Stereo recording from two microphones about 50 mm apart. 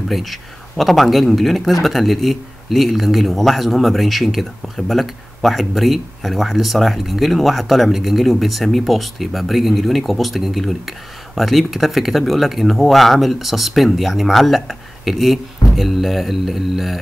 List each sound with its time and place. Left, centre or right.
0.1 s speech: centre